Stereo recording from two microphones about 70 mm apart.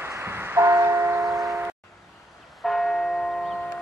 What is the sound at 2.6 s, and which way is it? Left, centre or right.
Church bell, centre.